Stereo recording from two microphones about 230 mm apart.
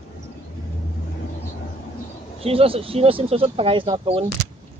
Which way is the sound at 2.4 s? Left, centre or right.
Right.